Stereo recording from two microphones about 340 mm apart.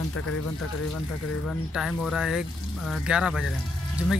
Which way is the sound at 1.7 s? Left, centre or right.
Centre.